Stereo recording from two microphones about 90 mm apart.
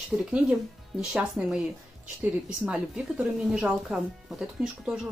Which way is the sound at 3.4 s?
5° right (ahead or behind).